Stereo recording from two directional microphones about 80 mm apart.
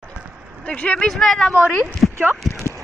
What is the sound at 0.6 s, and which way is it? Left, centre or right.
Speech, centre.